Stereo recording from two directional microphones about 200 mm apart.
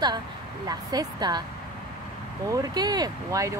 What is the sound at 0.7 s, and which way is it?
Speech, 20° right (ahead or behind).